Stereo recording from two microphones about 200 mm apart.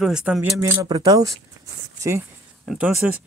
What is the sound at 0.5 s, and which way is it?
Speech, 15° right (ahead or behind).